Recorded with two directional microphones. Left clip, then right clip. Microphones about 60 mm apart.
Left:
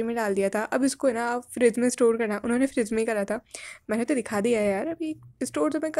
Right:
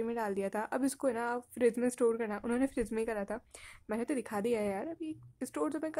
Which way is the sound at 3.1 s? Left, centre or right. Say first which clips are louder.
Left 10 dB; left.